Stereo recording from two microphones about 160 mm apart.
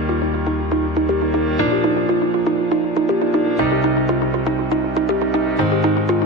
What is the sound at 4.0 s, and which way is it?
Music, centre (ahead or behind).